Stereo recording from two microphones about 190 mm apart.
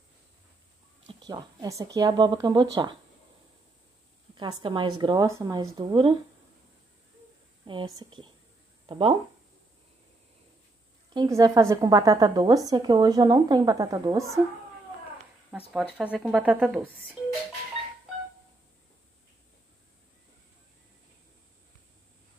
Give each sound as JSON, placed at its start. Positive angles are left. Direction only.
{"t": 1.0, "sound": "a woman's voice", "side_deg": -25}
{"t": 4.4, "sound": "a woman's voice", "side_deg": -25}
{"t": 7.6, "sound": "a woman's voice", "side_deg": -25}
{"t": 11.1, "sound": "a woman's voice", "side_deg": -20}
{"t": 15.5, "sound": "speech", "side_deg": -10}